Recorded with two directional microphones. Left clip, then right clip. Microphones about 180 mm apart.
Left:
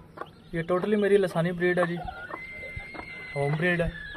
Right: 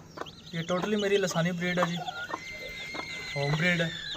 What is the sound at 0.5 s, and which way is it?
Speech, 35° left (ahead or behind).